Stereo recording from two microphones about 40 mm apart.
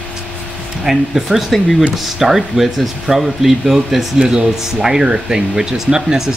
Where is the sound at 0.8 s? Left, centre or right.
Centre.